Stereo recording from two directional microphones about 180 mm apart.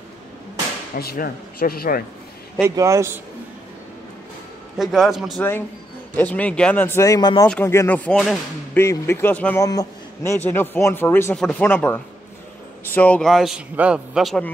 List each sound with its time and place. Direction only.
0.9 s speech: 55° left (ahead or behind)
2.7 s a man's voice: 15° right (ahead or behind)
4.7 s a man's voice: centre (ahead or behind); by 7.4 s 20° left (ahead or behind)
7.4 s a man's voice: 10° left (ahead or behind)
8.7 s a man's voice: 15° left (ahead or behind)